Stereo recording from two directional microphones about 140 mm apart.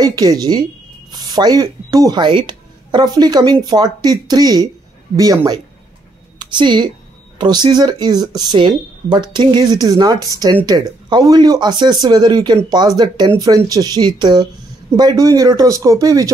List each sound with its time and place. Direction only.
0.0 s speech: 25° right (ahead or behind)